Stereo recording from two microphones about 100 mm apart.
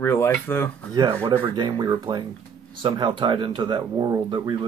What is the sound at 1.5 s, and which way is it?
Speech, 50° right (ahead or behind).